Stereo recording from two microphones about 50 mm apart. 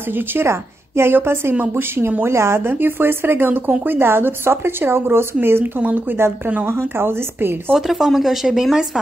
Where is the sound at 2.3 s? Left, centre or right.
Right.